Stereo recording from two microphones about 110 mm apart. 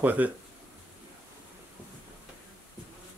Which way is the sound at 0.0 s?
15° right (ahead or behind).